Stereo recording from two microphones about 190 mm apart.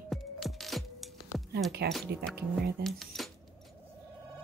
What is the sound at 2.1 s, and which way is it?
Speech, 60° right (ahead or behind).